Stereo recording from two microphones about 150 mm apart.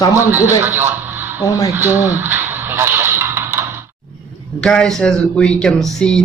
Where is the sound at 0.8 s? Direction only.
15° right (ahead or behind).